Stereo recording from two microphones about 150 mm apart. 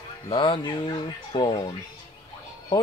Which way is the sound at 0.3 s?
35° left (ahead or behind).